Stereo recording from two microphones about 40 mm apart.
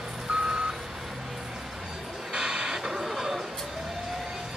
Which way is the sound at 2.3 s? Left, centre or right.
Centre.